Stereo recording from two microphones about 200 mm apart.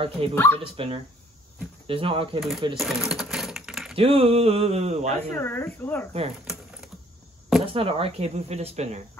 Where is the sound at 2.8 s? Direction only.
Centre (ahead or behind).